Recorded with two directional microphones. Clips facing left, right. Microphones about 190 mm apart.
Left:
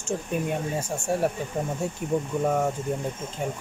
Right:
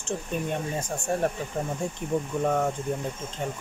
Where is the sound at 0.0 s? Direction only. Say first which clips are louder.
Left 2 dB; 10° left (ahead or behind).